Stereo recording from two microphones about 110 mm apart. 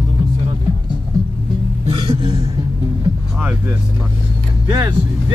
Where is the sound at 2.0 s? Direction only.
60° right (ahead or behind).